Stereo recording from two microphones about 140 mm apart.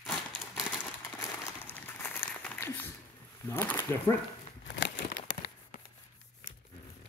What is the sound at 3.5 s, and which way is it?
Speech, 15° left (ahead or behind).